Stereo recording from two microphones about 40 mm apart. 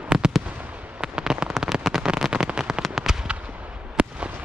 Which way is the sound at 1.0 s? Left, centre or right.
Centre.